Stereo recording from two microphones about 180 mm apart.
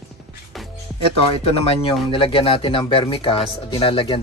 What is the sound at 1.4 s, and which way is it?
Speech, 35° left (ahead or behind).